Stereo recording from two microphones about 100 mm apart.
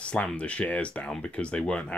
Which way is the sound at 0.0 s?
10° left (ahead or behind).